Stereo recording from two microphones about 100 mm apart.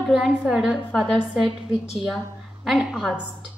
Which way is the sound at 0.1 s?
5° right (ahead or behind).